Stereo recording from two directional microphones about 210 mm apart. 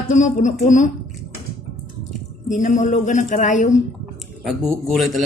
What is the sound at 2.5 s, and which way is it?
A woman's voice, 35° left (ahead or behind).